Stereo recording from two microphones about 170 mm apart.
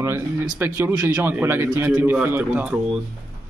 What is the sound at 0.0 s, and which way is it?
Speech, 15° right (ahead or behind).